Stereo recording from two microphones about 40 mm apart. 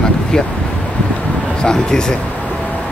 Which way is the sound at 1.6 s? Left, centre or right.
Centre.